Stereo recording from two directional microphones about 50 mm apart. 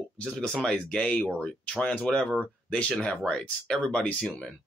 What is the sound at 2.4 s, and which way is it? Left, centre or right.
Speech, left.